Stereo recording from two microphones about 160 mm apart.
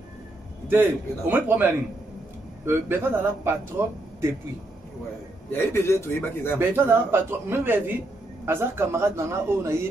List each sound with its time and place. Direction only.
0.7 s speech: 15° right (ahead or behind)
5.5 s a man's voice: 15° left (ahead or behind)
6.7 s speech: 15° right (ahead or behind)